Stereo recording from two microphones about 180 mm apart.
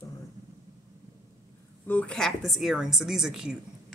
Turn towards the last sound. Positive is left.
turn(degrees=-5)  # may be behind; listen again after turning